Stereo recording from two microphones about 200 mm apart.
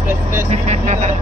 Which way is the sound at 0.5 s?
35° right (ahead or behind).